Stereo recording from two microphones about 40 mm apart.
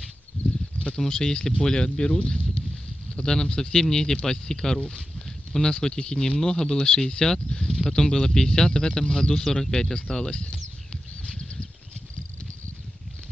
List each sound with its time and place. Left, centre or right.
0.8 s speech: centre